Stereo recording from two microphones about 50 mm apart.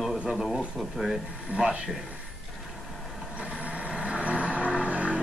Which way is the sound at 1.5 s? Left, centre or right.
Centre.